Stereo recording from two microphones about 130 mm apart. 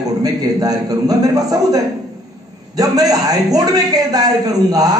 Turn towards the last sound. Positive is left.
turn(degrees=-30)  # may be behind; listen again after turning